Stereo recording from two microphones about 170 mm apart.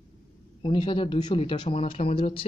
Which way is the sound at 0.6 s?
30° left (ahead or behind).